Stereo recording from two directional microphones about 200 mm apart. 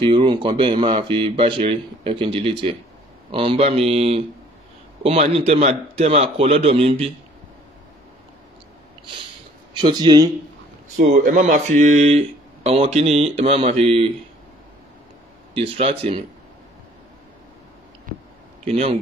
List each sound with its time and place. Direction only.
0.0 s speech: 25° right (ahead or behind)
9.8 s speech: 20° right (ahead or behind)
11.0 s speech: 40° right (ahead or behind)
15.5 s speech: 30° right (ahead or behind)
18.7 s speech: 30° right (ahead or behind)